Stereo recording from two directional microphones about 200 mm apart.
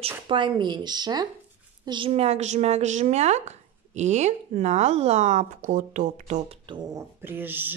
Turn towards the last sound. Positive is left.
turn(degrees=-10)  # may be behind; listen again after turning